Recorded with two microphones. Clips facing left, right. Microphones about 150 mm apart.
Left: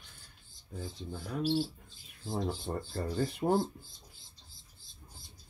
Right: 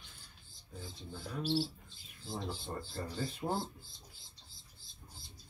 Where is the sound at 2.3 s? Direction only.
50° left (ahead or behind).